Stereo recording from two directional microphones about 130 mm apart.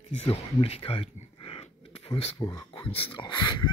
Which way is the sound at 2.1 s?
40° left (ahead or behind).